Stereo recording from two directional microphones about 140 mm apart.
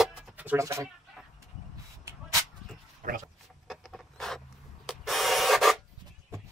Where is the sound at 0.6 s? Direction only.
20° right (ahead or behind).